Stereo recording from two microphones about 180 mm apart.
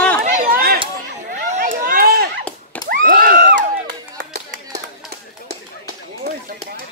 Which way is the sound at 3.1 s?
55° right (ahead or behind).